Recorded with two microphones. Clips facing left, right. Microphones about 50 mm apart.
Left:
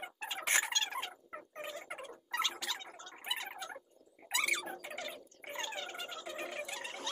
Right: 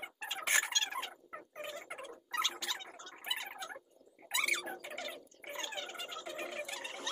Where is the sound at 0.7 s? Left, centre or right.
Centre.